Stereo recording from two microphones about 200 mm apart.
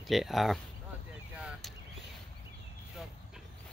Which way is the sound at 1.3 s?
5° right (ahead or behind).